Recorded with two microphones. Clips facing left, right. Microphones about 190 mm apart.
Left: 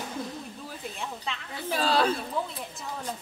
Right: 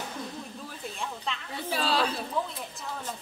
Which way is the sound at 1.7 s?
45° left (ahead or behind).